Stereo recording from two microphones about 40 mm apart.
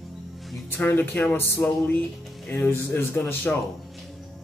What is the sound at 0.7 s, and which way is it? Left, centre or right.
Speech, left.